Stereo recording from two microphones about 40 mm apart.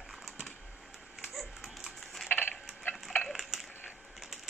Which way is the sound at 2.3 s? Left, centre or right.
Left.